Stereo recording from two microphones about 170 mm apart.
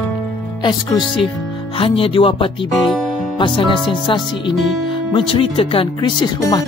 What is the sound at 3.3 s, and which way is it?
Speech, 30° left (ahead or behind).